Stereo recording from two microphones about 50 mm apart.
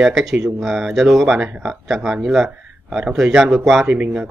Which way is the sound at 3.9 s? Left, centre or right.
Right.